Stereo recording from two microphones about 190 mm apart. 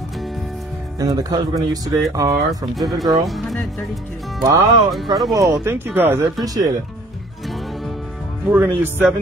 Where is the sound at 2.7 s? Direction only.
Centre (ahead or behind).